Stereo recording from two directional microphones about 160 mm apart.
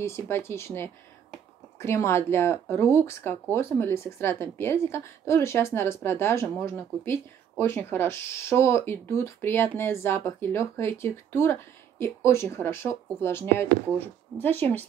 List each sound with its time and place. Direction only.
0.0 s speech: 15° left (ahead or behind)